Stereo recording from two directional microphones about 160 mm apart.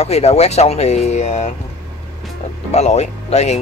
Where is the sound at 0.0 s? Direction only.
40° left (ahead or behind).